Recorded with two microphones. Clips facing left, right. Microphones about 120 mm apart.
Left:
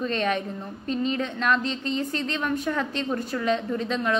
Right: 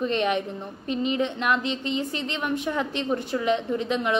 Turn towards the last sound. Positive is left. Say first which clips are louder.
# right 1 dB
turn(degrees=-15)  # may be behind; listen again after turning